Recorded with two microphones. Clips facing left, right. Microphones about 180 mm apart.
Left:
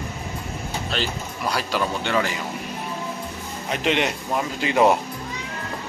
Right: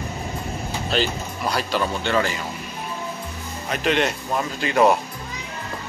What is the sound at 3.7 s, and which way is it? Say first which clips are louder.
Speech: right 1 dB; 20° left (ahead or behind).